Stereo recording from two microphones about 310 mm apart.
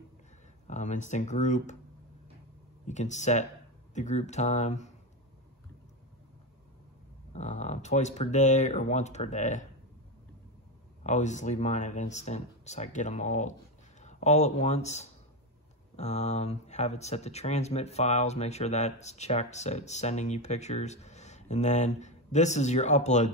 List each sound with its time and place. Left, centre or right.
0.7 s speech: left
2.9 s speech: left
7.3 s speech: left
11.1 s speech: left